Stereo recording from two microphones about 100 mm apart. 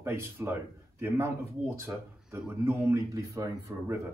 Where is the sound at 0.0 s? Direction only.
25° right (ahead or behind).